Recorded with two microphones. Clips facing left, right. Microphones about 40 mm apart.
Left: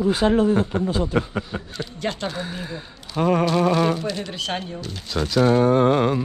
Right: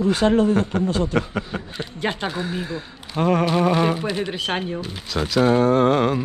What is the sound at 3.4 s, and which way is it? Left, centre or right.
Speech, right.